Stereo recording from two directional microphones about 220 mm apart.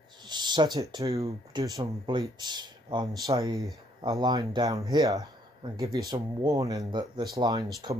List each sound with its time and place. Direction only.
0.2 s speech: 20° right (ahead or behind)